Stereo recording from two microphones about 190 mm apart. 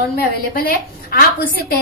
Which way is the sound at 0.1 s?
50° left (ahead or behind).